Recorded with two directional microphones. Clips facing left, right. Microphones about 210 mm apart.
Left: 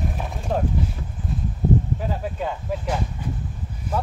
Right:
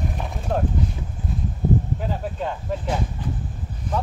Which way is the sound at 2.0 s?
5° left (ahead or behind).